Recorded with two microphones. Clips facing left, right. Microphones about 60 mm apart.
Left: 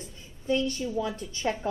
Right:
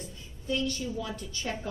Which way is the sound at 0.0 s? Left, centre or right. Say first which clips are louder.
Left 2 dB; left.